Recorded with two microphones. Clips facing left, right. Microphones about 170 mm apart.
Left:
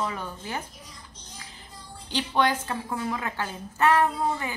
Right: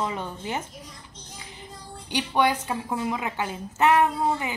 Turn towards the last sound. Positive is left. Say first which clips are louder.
# right 2 dB
turn(degrees=-20)  # may be behind; listen again after turning